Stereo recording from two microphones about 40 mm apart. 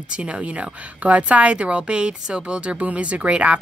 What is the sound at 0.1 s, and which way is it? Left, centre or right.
A woman's voice, right.